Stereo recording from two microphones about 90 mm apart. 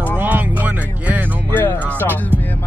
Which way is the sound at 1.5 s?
20° left (ahead or behind).